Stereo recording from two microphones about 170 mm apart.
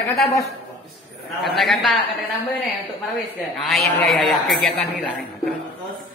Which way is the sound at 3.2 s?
Centre (ahead or behind).